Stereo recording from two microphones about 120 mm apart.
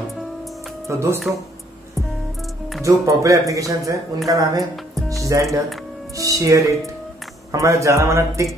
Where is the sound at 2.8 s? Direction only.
25° right (ahead or behind).